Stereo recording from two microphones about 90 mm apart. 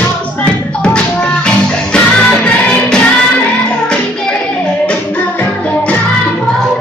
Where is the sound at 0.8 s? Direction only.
10° left (ahead or behind).